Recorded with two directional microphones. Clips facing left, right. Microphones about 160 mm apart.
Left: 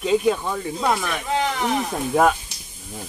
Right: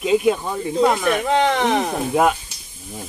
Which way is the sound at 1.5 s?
75° right (ahead or behind).